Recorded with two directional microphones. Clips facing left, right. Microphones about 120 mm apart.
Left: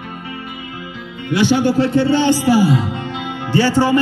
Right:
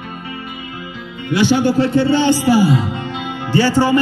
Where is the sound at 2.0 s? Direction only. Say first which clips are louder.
Even; 60° left (ahead or behind).